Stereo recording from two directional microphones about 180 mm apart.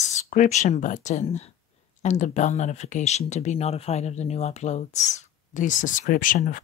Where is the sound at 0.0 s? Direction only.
40° left (ahead or behind).